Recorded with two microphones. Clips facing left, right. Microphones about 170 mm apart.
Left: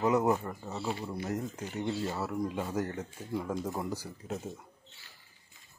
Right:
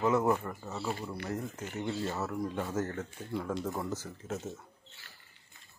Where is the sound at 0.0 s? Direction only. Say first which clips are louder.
Left 1 dB; 15° left (ahead or behind).